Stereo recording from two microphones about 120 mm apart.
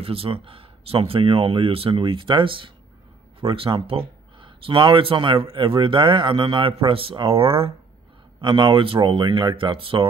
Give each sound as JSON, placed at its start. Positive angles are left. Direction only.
{"t": 0.0, "sound": "speech", "side_deg": -50}